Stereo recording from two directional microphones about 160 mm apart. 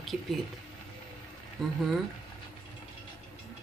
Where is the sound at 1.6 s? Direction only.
5° left (ahead or behind).